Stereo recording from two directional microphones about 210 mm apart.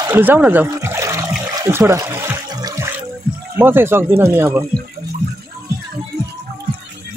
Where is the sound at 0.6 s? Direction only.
15° right (ahead or behind).